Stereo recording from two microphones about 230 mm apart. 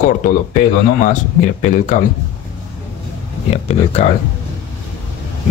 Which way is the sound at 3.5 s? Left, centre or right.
Left.